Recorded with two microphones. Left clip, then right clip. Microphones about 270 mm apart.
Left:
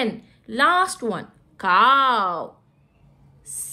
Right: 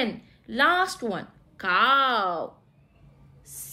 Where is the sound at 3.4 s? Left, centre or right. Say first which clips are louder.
Left 8 dB; centre.